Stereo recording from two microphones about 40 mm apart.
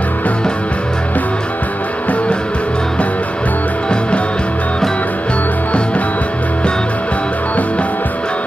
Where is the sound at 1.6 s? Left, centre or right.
Left.